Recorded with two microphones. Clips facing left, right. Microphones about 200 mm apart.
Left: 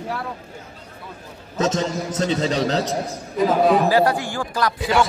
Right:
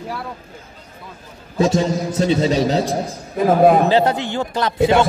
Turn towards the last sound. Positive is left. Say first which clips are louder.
# right 2 dB
turn(degrees=-25)  # may be behind; listen again after turning